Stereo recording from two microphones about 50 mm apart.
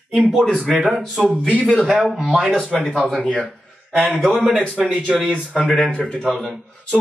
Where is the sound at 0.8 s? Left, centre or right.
Centre.